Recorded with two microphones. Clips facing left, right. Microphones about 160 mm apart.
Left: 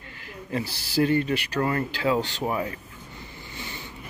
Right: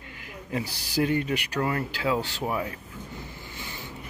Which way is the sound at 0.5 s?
10° right (ahead or behind).